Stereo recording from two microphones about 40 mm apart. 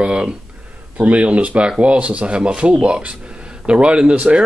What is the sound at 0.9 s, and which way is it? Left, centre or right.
Speech, right.